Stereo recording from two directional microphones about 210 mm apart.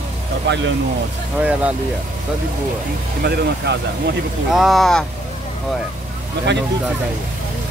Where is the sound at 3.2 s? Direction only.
50° right (ahead or behind).